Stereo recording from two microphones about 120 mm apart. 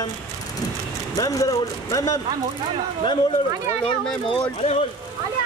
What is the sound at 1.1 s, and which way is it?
A man's voice, 30° left (ahead or behind).